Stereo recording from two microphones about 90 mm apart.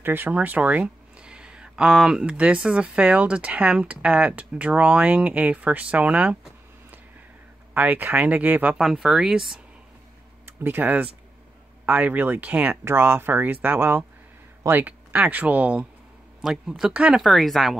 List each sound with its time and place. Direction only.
0.0 s speech: 20° right (ahead or behind)
7.7 s speech: 20° right (ahead or behind)
8.7 s speech: 5° right (ahead or behind)
10.4 s speech: 25° right (ahead or behind)
16.3 s speech: 5° right (ahead or behind)
17.2 s speech: centre (ahead or behind)